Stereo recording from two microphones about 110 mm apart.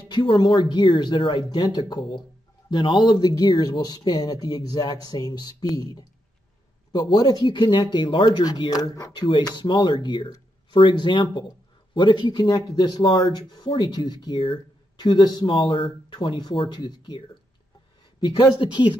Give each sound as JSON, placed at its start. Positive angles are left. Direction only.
{"t": 0.1, "sound": "speech", "side_deg": 45}